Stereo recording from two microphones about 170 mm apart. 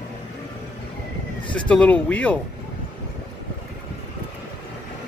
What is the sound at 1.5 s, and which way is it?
Speech, 5° left (ahead or behind).